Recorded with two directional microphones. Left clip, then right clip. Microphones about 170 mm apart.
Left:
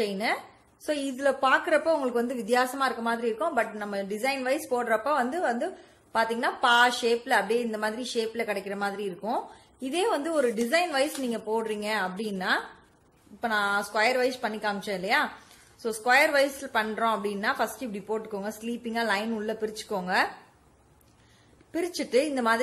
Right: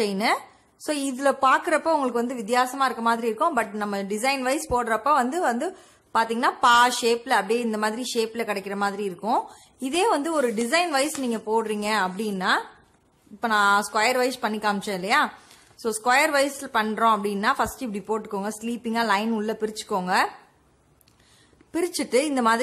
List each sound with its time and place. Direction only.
0.0 s a woman's voice: 30° right (ahead or behind)
21.7 s a woman's voice: 30° right (ahead or behind)